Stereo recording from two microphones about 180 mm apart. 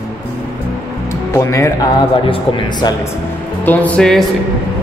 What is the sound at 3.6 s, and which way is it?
Speech, 10° left (ahead or behind).